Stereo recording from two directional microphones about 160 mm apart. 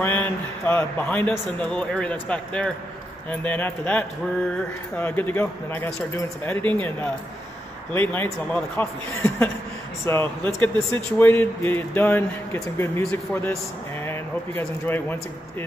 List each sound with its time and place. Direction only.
0.0 s a man's voice: 10° left (ahead or behind)
14.6 s a man's voice: 10° left (ahead or behind)